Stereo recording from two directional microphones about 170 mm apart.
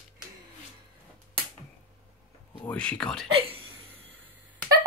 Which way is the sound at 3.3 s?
35° right (ahead or behind).